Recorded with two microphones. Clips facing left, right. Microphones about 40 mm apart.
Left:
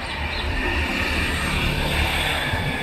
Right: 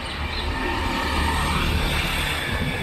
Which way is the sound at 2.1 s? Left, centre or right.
Left.